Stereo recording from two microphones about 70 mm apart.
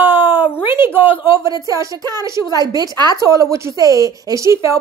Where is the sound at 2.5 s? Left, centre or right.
Right.